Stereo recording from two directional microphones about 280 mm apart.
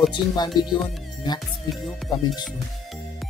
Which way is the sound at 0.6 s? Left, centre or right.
Centre.